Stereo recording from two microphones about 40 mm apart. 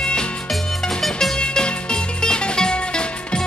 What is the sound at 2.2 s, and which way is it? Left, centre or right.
Music, centre.